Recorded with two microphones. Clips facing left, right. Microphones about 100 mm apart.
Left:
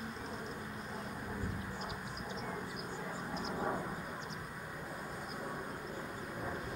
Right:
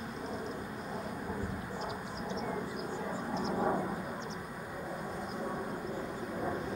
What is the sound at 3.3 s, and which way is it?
Vehicle, 25° right (ahead or behind).